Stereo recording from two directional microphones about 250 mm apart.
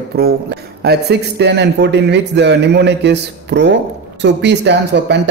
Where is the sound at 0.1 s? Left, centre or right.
Right.